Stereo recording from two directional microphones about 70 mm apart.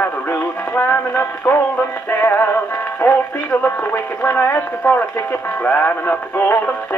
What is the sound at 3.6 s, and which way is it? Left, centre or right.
Speech, left.